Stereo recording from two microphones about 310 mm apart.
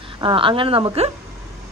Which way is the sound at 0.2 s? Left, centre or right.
Centre.